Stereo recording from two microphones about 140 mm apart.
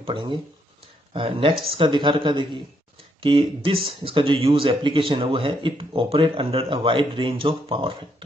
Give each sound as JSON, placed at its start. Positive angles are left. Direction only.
{"t": 0.0, "sound": "speech", "side_deg": -35}